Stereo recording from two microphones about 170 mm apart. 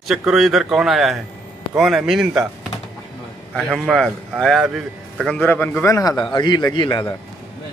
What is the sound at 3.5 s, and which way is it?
A man's voice, centre (ahead or behind).